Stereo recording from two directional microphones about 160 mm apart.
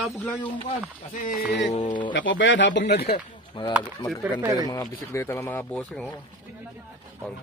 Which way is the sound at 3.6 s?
30° left (ahead or behind).